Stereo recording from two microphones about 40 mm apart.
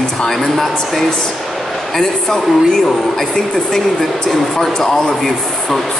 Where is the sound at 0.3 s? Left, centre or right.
Centre.